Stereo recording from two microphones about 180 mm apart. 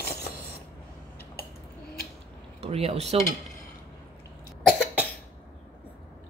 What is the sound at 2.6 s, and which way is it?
Speech, 35° right (ahead or behind).